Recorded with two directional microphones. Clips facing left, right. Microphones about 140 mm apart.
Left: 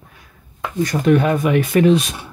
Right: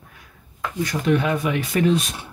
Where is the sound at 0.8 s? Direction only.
45° left (ahead or behind).